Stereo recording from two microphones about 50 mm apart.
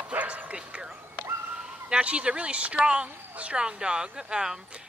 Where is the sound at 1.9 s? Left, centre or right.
Right.